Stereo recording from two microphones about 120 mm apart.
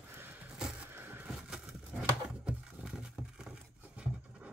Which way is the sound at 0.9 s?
15° right (ahead or behind).